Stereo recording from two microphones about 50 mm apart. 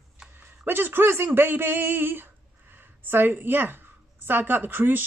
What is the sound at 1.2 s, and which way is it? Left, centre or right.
A woman's voice, right.